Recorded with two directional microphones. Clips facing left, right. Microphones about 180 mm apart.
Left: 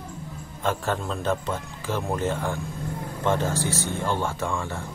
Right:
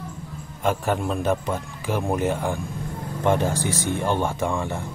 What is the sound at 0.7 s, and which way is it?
A man's voice, 15° right (ahead or behind).